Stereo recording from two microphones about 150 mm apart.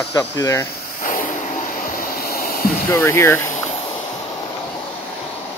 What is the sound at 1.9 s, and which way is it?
Vehicle, 75° left (ahead or behind).